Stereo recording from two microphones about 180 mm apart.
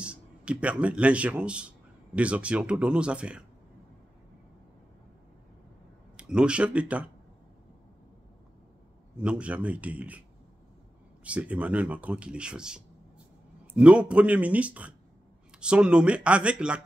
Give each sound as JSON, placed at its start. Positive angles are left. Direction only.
{"t": 0.0, "sound": "a man's voice", "side_deg": -5}
{"t": 6.1, "sound": "speech", "side_deg": -5}
{"t": 9.1, "sound": "speech", "side_deg": -5}
{"t": 11.2, "sound": "speech", "side_deg": -5}